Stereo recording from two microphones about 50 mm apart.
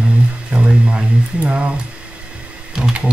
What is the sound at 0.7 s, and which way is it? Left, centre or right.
Speech, centre.